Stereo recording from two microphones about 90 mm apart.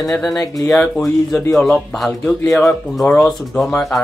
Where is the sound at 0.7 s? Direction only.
5° left (ahead or behind).